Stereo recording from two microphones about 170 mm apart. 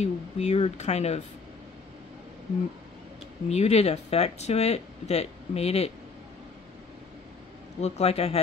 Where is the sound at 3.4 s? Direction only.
40° left (ahead or behind).